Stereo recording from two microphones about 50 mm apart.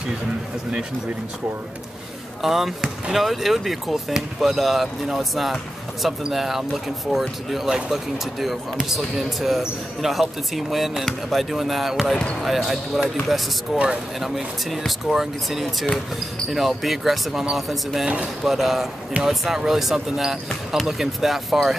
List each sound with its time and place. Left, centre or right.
2.4 s speech: centre
18.0 s speech: right
18.4 s speech: centre